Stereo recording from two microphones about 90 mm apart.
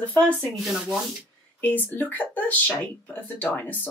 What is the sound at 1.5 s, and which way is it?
Speech, 20° left (ahead or behind).